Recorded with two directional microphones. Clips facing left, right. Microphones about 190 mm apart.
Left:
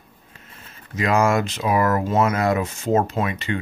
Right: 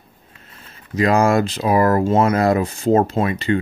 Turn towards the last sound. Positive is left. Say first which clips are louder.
# right 5 dB
turn(degrees=-35)  # may be behind; listen again after turning